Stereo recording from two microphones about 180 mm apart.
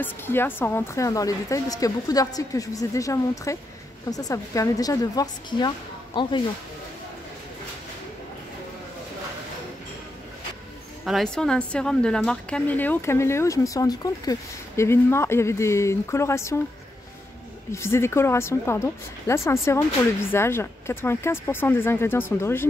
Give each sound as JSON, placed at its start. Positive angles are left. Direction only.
{"t": 0.0, "sound": "a woman's voice", "side_deg": 10}
{"t": 11.1, "sound": "a woman's voice", "side_deg": 0}
{"t": 17.6, "sound": "a woman's voice", "side_deg": 15}